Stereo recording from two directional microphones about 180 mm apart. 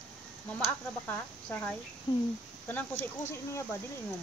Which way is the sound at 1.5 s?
10° left (ahead or behind).